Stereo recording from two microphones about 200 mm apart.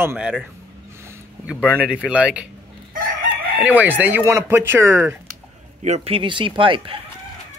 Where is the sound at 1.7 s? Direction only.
5° right (ahead or behind).